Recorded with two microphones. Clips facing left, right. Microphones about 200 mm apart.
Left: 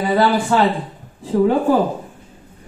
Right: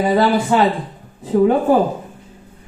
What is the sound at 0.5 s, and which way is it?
Music, 15° right (ahead or behind).